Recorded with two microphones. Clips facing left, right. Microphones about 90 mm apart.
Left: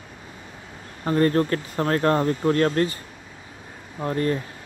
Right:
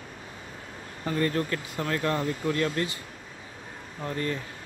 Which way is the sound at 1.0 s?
40° left (ahead or behind).